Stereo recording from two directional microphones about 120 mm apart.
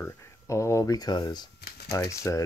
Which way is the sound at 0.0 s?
25° left (ahead or behind).